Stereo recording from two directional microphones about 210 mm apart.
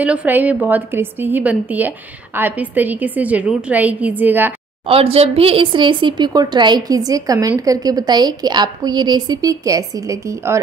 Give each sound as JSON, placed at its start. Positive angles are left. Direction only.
{"t": 0.0, "sound": "a woman's voice", "side_deg": -5}
{"t": 4.8, "sound": "speech", "side_deg": -25}